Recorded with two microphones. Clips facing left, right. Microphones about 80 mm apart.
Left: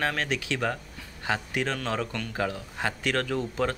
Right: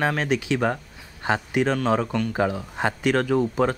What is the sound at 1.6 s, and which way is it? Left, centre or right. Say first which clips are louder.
Speech: right 8 dB; centre.